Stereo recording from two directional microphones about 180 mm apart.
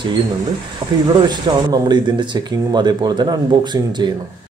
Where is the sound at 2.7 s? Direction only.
25° right (ahead or behind).